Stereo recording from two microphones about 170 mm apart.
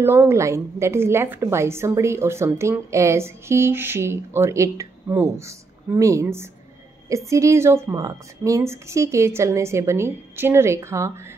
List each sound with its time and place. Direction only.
0.0 s a woman's voice: 15° right (ahead or behind)